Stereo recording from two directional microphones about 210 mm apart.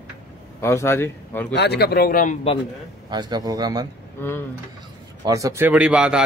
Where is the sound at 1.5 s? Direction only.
50° left (ahead or behind).